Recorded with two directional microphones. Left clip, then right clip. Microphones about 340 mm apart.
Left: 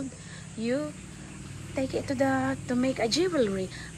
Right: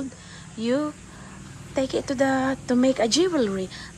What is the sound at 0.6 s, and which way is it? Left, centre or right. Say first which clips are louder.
A woman's voice: right 5 dB; centre.